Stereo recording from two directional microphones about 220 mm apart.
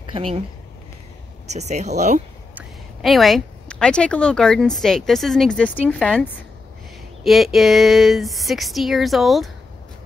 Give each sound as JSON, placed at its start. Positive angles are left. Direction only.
{"t": 0.1, "sound": "speech", "side_deg": -25}
{"t": 1.5, "sound": "speech", "side_deg": -30}
{"t": 2.5, "sound": "a woman's voice", "side_deg": 0}
{"t": 7.2, "sound": "a woman's voice", "side_deg": 0}